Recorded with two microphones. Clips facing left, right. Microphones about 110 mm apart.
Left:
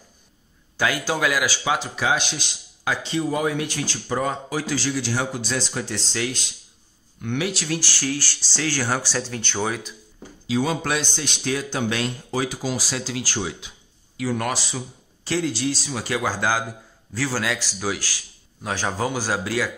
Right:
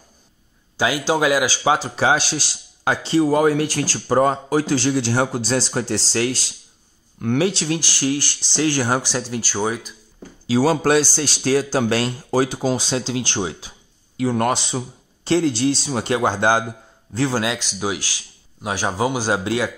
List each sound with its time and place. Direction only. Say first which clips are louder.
0.7 s speech: right 4 dB; 20° right (ahead or behind)
7.3 s a man's voice: right 5 dB; 30° right (ahead or behind)
7.8 s speech: right 5 dB; 15° right (ahead or behind)
10.7 s a man's voice: right 8 dB; 35° right (ahead or behind)